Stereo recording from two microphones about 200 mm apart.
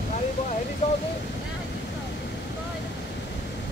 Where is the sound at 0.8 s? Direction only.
30° left (ahead or behind).